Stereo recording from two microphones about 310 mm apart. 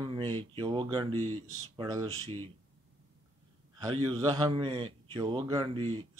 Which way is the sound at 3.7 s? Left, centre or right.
Centre.